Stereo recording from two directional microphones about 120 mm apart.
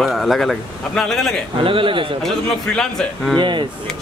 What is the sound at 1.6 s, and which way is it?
Speech, 45° right (ahead or behind).